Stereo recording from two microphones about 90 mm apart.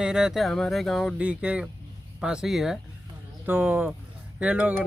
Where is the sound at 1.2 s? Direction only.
15° right (ahead or behind).